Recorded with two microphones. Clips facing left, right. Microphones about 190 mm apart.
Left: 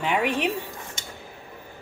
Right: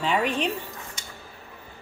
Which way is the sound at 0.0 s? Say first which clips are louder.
Even; 15° left (ahead or behind).